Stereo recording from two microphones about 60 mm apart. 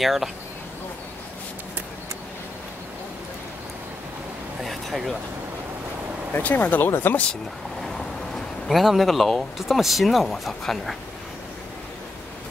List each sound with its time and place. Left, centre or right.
0.0 s speech: centre
4.6 s speech: centre
6.3 s speech: left
8.6 s speech: centre